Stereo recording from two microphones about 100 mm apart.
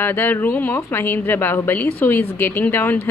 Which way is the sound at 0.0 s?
20° left (ahead or behind).